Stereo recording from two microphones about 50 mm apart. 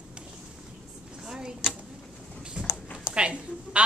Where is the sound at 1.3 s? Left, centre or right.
Centre.